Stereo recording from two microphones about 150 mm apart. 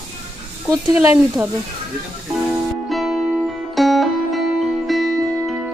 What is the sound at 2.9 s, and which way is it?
Music, centre (ahead or behind).